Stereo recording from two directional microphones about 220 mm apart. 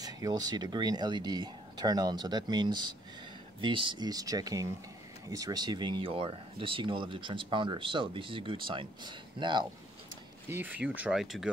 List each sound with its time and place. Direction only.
0.0 s speech: 15° right (ahead or behind)
10.5 s speech: 10° right (ahead or behind)